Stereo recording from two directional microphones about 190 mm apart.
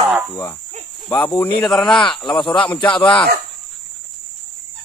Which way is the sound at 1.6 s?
Centre (ahead or behind).